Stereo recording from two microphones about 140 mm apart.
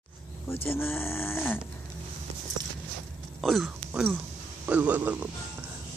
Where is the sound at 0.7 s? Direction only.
15° left (ahead or behind).